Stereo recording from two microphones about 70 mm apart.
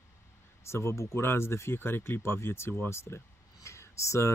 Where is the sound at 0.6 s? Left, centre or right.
Left.